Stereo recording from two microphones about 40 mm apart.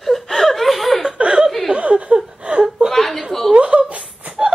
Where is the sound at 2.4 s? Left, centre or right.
Right.